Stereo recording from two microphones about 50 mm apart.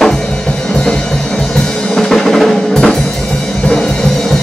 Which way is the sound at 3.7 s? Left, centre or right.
Centre.